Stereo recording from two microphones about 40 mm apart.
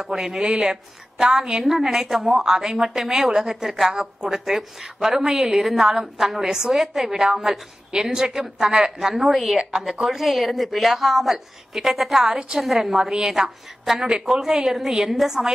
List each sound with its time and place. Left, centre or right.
0.0 s a woman's voice: centre
14.0 s a woman's voice: right
14.4 s a woman's voice: centre